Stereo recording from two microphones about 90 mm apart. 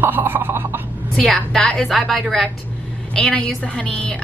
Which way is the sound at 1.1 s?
5° left (ahead or behind).